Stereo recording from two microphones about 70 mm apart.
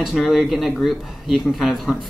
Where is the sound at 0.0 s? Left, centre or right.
Centre.